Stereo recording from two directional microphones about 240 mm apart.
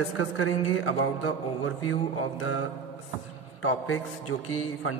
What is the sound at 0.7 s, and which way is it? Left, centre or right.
Speech, left.